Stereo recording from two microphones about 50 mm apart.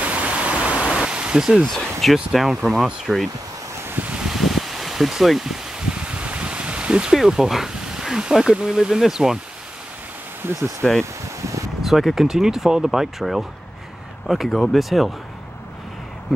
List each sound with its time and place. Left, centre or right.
0.0 s pink noise: right
1.7 s speech: centre
2.3 s speech: centre
4.2 s a sound: centre
5.9 s a sound: right
7.2 s speech: centre
10.4 s speech: right
10.8 s speech: centre
11.4 s a sound: right
11.8 s speech: centre
16.3 s speech: centre